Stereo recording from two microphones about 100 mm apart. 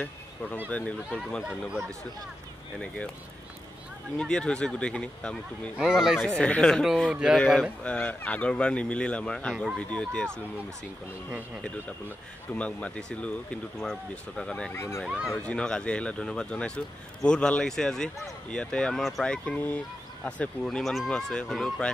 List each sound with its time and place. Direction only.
0.7 s speech: 15° left (ahead or behind)
4.2 s speech: 10° left (ahead or behind)
5.8 s speech: 5° right (ahead or behind)
6.4 s speech: 10° left (ahead or behind)
7.1 s speech: 10° right (ahead or behind)
7.3 s speech: 5° left (ahead or behind)
12.5 s speech: 10° left (ahead or behind)
14.7 s speech: 25° left (ahead or behind)
15.0 s speech: 10° right (ahead or behind)
15.3 s speech: 10° left (ahead or behind)
20.6 s speech: centre (ahead or behind)